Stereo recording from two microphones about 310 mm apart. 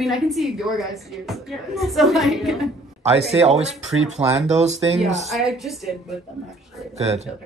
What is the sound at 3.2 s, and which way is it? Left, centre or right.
Speech, centre.